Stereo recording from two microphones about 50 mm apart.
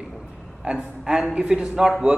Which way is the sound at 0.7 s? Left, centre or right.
Centre.